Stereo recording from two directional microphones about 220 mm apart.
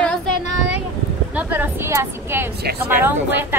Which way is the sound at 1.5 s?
10° right (ahead or behind).